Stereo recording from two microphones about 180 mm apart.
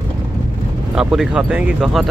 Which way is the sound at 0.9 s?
5° right (ahead or behind).